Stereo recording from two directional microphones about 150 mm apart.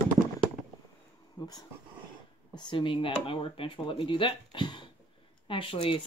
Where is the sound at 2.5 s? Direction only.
35° left (ahead or behind).